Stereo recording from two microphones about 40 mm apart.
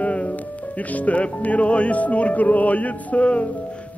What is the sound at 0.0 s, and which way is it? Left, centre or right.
Music, left.